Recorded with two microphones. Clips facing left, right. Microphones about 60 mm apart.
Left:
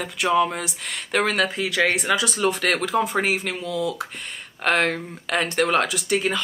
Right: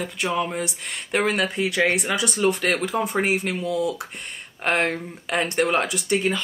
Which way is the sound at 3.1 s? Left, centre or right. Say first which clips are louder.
Right 1 dB; right.